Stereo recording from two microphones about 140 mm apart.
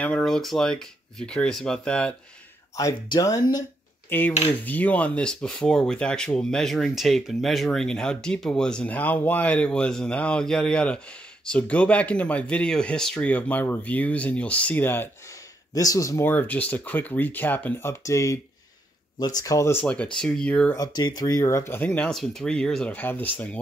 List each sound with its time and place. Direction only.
0.0 s cutlery: 5° left (ahead or behind)
2.7 s speech: 25° left (ahead or behind)
4.1 s cutlery: 10° left (ahead or behind)
11.4 s speech: 5° left (ahead or behind)
15.7 s speech: 25° left (ahead or behind); by 20.7 s 5° left (ahead or behind)
20.7 s speech: 30° left (ahead or behind); by 23.6 s 10° left (ahead or behind)